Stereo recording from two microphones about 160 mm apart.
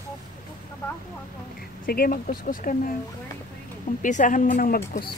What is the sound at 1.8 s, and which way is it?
Speech, 65° left (ahead or behind).